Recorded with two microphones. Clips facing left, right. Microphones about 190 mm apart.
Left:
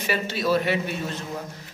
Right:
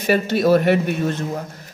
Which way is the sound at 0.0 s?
45° right (ahead or behind).